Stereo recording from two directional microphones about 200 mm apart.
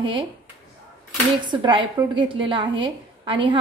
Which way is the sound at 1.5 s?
25° right (ahead or behind).